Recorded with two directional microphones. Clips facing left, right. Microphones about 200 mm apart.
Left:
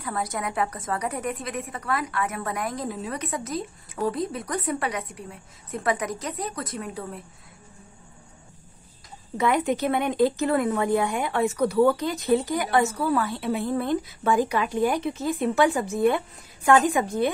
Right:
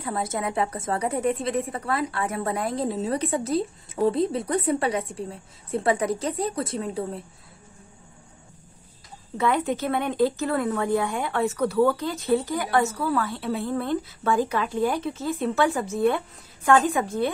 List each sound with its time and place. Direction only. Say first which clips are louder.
0.0 s a woman's voice: right 2 dB; 25° right (ahead or behind)
9.4 s speech: left 1 dB; 15° left (ahead or behind)